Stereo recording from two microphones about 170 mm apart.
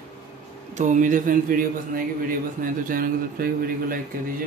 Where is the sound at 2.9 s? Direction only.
55° right (ahead or behind).